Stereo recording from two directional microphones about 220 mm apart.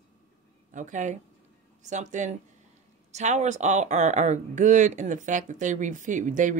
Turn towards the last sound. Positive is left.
turn(degrees=-35)  # may be behind; listen again after turning